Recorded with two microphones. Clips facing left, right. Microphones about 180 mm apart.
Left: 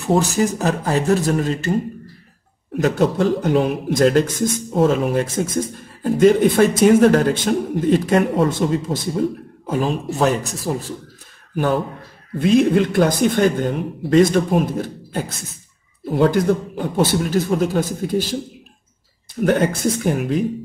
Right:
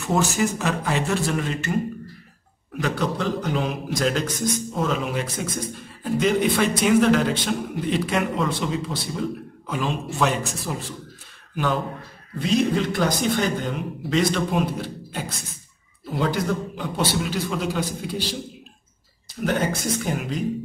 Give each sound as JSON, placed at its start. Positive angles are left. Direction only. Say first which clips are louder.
{"t": 0.0, "sound": "speech", "louder": "left 5 dB", "side_deg": 35}
{"t": 2.7, "sound": "a man's voice", "louder": "left 7 dB", "side_deg": 45}
{"t": 19.4, "sound": "speech", "louder": "left 6 dB", "side_deg": 55}